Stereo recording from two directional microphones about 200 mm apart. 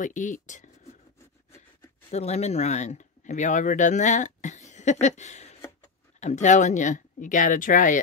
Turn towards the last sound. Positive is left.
turn(degrees=40)  # may be behind; listen again after turning